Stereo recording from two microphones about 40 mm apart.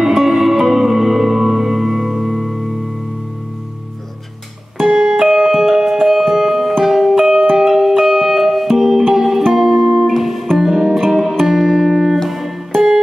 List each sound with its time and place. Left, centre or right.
0.0 s music: centre
4.8 s music: centre